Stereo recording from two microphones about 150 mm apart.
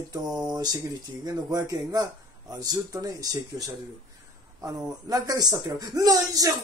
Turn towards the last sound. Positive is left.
turn(degrees=-25)  # may be behind; listen again after turning